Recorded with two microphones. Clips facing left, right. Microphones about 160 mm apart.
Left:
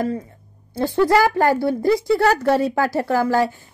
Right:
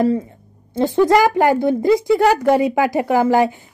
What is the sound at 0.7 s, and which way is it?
A woman's voice, 20° right (ahead or behind).